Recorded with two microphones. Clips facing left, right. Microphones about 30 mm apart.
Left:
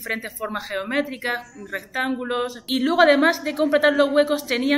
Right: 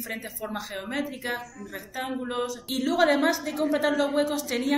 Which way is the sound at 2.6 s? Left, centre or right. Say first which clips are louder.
Left 7 dB; left.